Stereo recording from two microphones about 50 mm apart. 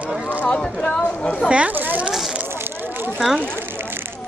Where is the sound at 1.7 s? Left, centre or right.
Right.